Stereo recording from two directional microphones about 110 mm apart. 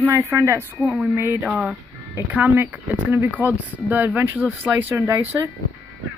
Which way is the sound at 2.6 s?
20° right (ahead or behind).